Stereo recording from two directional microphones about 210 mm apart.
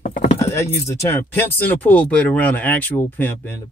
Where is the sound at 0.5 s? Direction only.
15° left (ahead or behind).